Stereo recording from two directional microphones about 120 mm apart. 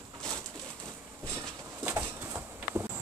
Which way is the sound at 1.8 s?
15° right (ahead or behind).